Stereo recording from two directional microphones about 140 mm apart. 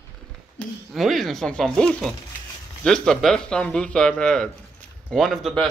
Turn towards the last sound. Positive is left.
turn(degrees=0)  # may be behind; listen again after turning